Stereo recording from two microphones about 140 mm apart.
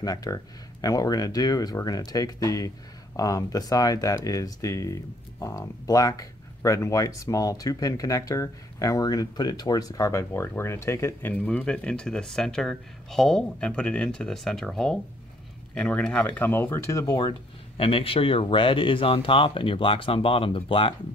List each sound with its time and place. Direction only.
0.0 s speech: 25° left (ahead or behind)
17.7 s speech: 40° left (ahead or behind)